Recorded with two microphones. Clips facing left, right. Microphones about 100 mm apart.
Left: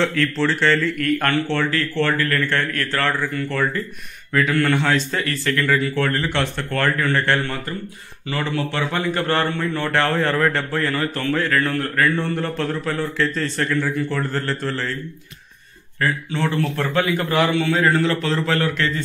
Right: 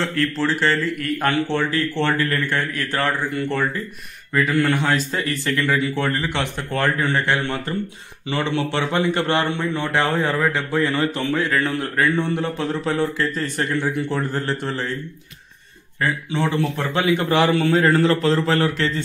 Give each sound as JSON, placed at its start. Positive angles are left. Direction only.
{"t": 0.2, "sound": "a man's voice", "side_deg": -10}
{"t": 4.3, "sound": "a man's voice", "side_deg": -5}
{"t": 8.3, "sound": "a man's voice", "side_deg": -25}
{"t": 16.0, "sound": "a man's voice", "side_deg": -20}